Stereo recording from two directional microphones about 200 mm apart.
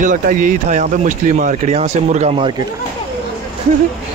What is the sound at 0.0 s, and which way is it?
Speech, 40° right (ahead or behind).